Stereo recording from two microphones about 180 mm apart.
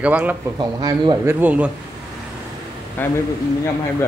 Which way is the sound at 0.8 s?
20° right (ahead or behind).